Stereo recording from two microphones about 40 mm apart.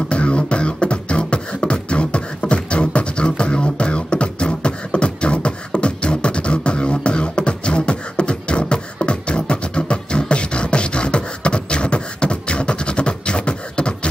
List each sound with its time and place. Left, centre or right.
0.1 s beatboxing: left